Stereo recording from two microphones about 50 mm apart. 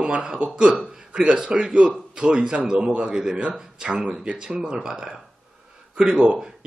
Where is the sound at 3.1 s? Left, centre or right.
Centre.